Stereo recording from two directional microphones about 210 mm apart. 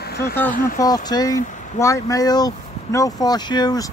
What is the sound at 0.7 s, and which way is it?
Speech, 20° left (ahead or behind).